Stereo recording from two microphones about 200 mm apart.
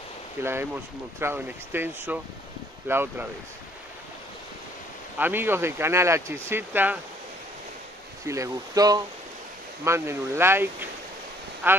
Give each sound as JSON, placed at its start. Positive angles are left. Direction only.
{"t": 0.4, "sound": "speech", "side_deg": -10}
{"t": 5.2, "sound": "speech", "side_deg": -10}
{"t": 8.3, "sound": "speech", "side_deg": -15}